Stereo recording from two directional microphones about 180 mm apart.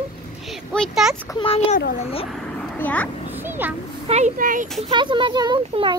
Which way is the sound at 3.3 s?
10° right (ahead or behind).